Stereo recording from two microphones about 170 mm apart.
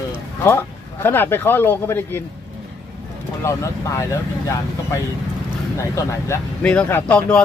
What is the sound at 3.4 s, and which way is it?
Speech, 15° left (ahead or behind).